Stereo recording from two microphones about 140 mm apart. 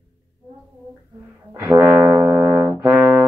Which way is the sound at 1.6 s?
20° right (ahead or behind).